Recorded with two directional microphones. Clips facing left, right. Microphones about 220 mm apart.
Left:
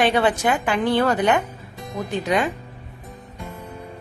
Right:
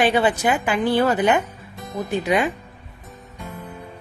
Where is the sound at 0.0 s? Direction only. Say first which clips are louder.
Even; 5° right (ahead or behind).